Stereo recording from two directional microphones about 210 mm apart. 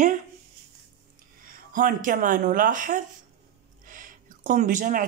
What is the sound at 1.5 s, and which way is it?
A man's voice, 40° right (ahead or behind).